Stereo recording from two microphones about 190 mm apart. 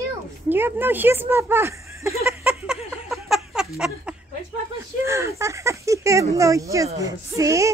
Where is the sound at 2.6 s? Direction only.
Centre (ahead or behind).